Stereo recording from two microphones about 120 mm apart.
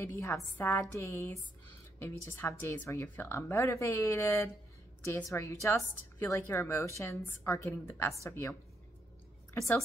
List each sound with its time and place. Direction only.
0.1 s a woman's voice: 25° left (ahead or behind)